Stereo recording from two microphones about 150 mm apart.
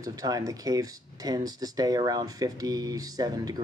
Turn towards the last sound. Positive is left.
turn(degrees=-25)  # may be behind; listen again after turning